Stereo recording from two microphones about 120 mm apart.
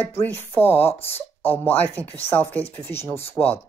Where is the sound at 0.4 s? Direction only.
20° left (ahead or behind).